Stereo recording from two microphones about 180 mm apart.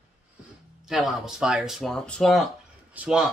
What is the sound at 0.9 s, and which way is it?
Speech, 5° right (ahead or behind).